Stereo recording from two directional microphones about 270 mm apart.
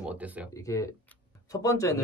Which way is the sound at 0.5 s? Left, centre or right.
Centre.